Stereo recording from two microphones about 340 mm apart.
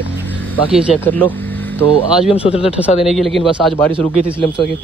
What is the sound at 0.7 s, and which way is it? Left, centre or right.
Speech, centre.